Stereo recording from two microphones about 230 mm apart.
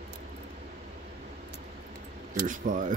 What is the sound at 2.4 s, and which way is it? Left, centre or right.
Speech, right.